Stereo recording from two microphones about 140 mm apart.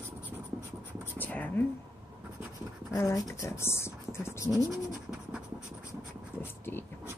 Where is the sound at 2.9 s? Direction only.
20° left (ahead or behind).